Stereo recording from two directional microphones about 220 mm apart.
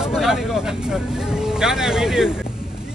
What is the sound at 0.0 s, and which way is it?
Speech, 5° right (ahead or behind).